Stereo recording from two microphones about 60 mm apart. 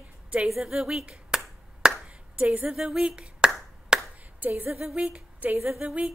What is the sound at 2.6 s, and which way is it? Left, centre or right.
Speech, centre.